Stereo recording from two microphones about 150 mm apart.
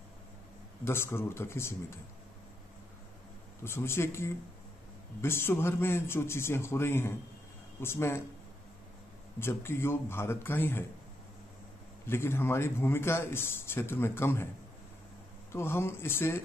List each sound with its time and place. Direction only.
0.8 s a man's voice: 15° left (ahead or behind)
3.6 s a man's voice: 15° left (ahead or behind)
9.4 s a man's voice: 15° left (ahead or behind)
12.1 s a man's voice: 15° left (ahead or behind)
15.5 s a man's voice: 15° left (ahead or behind)